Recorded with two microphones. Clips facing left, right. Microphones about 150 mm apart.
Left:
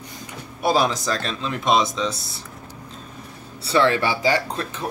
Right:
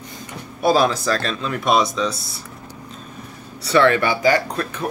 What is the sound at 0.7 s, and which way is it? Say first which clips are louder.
Speech: right 3 dB; 20° left (ahead or behind).